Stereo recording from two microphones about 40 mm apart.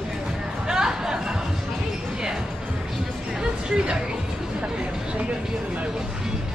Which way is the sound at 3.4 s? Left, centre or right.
Right.